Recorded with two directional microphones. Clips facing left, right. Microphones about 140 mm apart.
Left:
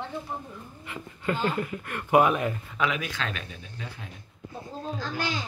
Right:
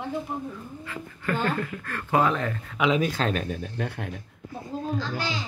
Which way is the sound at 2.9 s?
40° right (ahead or behind).